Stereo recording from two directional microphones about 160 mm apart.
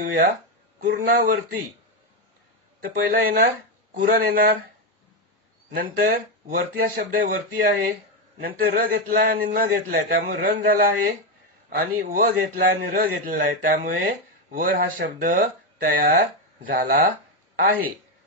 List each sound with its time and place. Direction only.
0.0 s a man's voice: 70° right (ahead or behind)
0.7 s a man's voice: 60° right (ahead or behind)
2.8 s a man's voice: 65° right (ahead or behind)
6.5 s a man's voice: 65° right (ahead or behind)